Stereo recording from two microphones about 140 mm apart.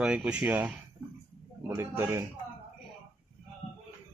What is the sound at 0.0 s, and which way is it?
Speech, 5° right (ahead or behind).